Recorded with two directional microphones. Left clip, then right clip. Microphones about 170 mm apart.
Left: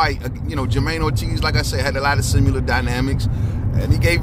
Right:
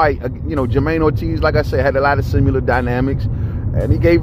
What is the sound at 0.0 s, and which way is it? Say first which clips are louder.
Speech: right 4 dB; 40° right (ahead or behind).